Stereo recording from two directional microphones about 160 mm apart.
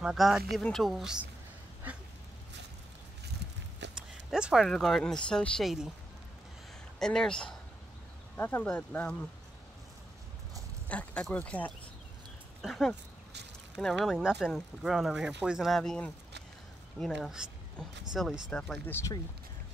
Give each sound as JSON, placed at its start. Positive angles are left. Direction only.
{"t": 0.0, "sound": "speech", "side_deg": 0}
{"t": 1.8, "sound": "dog", "side_deg": -10}
{"t": 3.8, "sound": "a sound", "side_deg": -90}
{"t": 4.3, "sound": "speech", "side_deg": -5}
{"t": 7.0, "sound": "speech", "side_deg": 5}
{"t": 10.9, "sound": "speech", "side_deg": 5}